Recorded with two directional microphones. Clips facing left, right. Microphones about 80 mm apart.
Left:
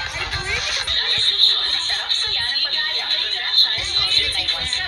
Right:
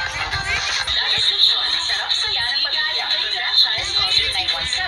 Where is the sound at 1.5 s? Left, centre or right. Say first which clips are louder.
Right 2 dB; right.